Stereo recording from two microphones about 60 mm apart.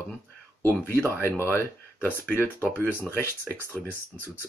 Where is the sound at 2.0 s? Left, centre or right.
Left.